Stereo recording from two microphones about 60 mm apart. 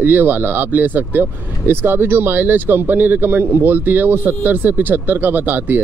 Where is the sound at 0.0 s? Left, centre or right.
Right.